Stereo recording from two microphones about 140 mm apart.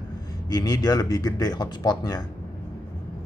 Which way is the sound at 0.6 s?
25° left (ahead or behind).